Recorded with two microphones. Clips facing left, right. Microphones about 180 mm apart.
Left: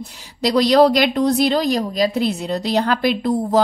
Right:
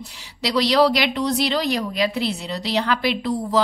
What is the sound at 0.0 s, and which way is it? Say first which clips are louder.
Speech: left 6 dB; 45° left (ahead or behind).